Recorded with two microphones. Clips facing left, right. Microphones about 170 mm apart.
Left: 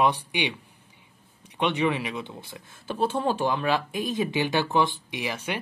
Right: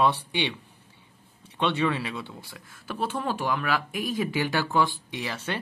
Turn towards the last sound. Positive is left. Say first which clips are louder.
# left 1 dB
turn(degrees=15)  # may be behind; listen again after turning